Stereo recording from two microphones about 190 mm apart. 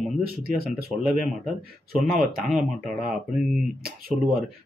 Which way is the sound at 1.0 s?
Centre (ahead or behind).